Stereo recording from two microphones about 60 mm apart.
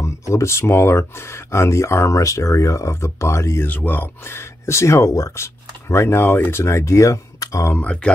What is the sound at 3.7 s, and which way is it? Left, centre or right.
Speech, left.